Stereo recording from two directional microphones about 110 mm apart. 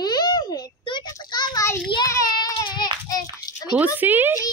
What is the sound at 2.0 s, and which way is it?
Child singing, 35° left (ahead or behind).